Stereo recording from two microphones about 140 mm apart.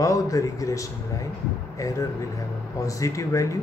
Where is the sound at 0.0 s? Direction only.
25° left (ahead or behind).